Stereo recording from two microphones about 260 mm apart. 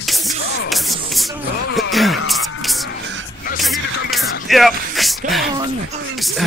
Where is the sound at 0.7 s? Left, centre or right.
Centre.